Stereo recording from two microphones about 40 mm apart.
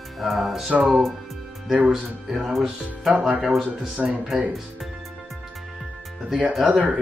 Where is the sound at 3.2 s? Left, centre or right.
Right.